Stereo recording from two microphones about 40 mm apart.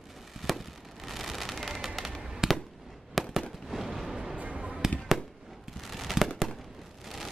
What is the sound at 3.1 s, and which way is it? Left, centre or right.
Fireworks, centre.